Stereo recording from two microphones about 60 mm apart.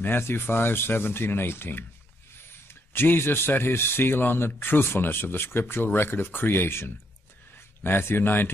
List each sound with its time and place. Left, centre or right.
0.0 s a man's voice: left